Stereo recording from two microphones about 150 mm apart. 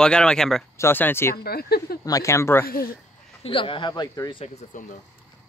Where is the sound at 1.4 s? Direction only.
90° left.